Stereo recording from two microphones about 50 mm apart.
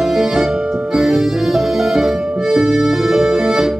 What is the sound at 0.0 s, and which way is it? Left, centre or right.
Music, centre.